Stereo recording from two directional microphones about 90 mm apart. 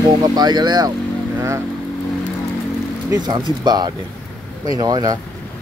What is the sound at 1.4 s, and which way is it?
Vehicle, 30° right (ahead or behind).